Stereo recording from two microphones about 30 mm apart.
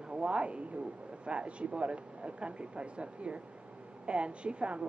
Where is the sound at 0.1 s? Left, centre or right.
Right.